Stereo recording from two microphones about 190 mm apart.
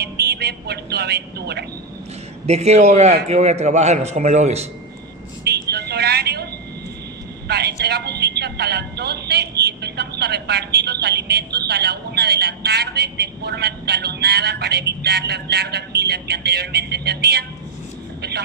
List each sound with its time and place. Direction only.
0.2 s a woman's voice: 55° right (ahead or behind)
2.4 s a man's voice: 35° right (ahead or behind)
5.4 s vehicle: 60° right (ahead or behind)
7.4 s a woman's voice: 60° right (ahead or behind)
18.2 s vehicle: 60° right (ahead or behind)